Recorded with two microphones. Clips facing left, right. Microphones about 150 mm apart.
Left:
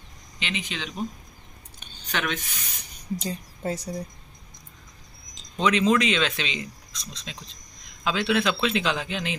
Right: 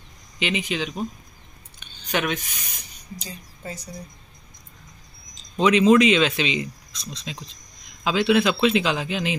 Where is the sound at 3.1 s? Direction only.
60° left (ahead or behind).